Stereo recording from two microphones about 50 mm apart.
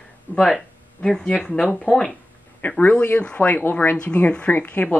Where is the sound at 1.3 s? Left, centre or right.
Left.